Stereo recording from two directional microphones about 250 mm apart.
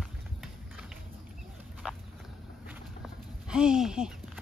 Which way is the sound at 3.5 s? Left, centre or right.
Centre.